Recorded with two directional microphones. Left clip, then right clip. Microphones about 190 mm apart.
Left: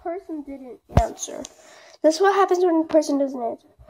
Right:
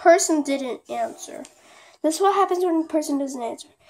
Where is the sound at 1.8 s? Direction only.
10° right (ahead or behind).